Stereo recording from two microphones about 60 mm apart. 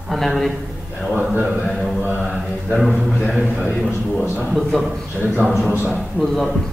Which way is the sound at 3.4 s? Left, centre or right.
Right.